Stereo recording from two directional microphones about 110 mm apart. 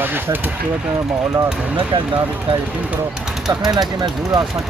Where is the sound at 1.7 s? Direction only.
55° right (ahead or behind).